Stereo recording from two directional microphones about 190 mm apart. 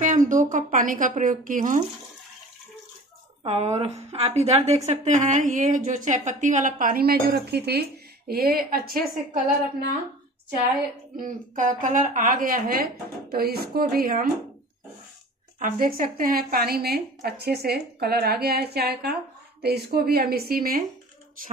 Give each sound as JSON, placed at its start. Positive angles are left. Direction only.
{"t": 0.0, "sound": "a woman's voice", "side_deg": -40}
{"t": 3.4, "sound": "a woman's voice", "side_deg": -35}
{"t": 11.1, "sound": "a woman's voice", "side_deg": -45}
{"t": 15.6, "sound": "a woman's voice", "side_deg": -50}